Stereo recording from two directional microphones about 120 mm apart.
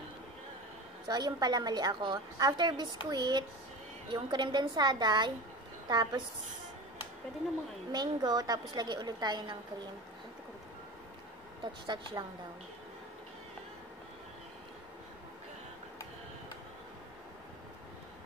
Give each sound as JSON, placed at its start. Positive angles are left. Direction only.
{"t": 1.0, "sound": "a woman's voice", "side_deg": -35}
{"t": 7.9, "sound": "a woman's voice", "side_deg": -35}
{"t": 11.6, "sound": "a woman's voice", "side_deg": -40}